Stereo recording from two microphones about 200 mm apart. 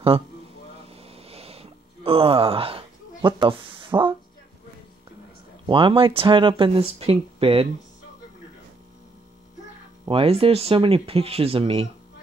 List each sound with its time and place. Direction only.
0.8 s a sound: 30° right (ahead or behind)
5.7 s speech: 25° right (ahead or behind)
10.0 s speech: 30° right (ahead or behind)